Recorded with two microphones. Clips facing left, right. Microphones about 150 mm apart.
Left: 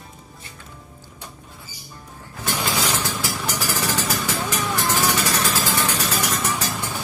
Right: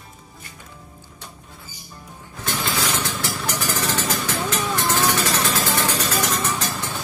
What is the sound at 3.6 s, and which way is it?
Vehicle, 10° left (ahead or behind).